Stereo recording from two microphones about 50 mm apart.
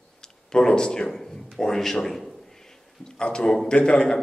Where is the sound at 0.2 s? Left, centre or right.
Centre.